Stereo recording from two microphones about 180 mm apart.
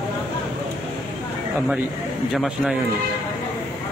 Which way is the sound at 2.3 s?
5° right (ahead or behind).